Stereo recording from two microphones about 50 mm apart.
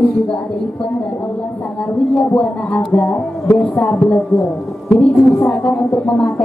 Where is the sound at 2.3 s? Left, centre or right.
Left.